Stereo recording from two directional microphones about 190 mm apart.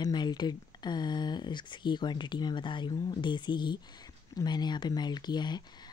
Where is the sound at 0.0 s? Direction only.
20° left (ahead or behind).